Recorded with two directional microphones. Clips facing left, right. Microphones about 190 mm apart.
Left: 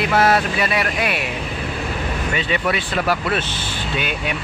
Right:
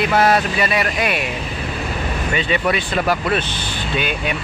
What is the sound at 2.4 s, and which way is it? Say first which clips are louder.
Speech: right 3 dB; centre (ahead or behind).